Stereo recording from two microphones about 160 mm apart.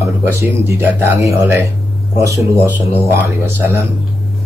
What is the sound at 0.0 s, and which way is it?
Speech, 15° right (ahead or behind).